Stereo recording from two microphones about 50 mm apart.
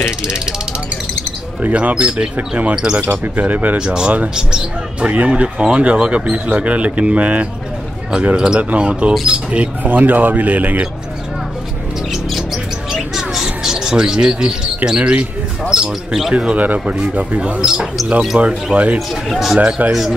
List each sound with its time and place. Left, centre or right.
0.2 s speech: centre
1.6 s speech: right
2.7 s speech: centre
3.0 s speech: right
3.7 s speech: centre
5.0 s speech: right
9.8 s speech: right
12.1 s bird: centre
14.9 s speech: right
16.5 s speech: right
17.6 s speech: centre
18.4 s speech: right
18.9 s speech: centre